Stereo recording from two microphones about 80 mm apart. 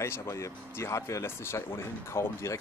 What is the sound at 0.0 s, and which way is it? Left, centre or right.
Speech, left.